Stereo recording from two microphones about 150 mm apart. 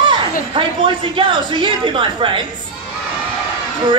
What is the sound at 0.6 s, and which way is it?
A woman's voice, 35° right (ahead or behind).